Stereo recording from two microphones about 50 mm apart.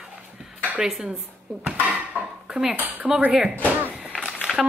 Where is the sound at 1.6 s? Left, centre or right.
Right.